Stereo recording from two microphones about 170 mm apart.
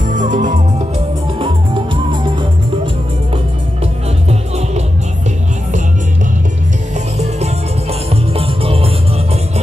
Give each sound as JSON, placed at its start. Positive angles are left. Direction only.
{"t": 0.1, "sound": "music", "side_deg": -50}
{"t": 3.8, "sound": "music", "side_deg": -40}
{"t": 7.2, "sound": "music", "side_deg": -40}